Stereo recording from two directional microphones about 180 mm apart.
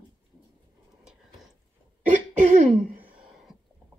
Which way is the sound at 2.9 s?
55° right (ahead or behind).